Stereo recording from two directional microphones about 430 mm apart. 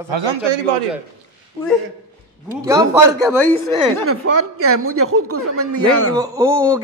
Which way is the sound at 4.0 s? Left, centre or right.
Right.